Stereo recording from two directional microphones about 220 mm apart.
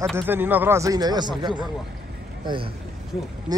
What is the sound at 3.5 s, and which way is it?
Speech, 20° right (ahead or behind).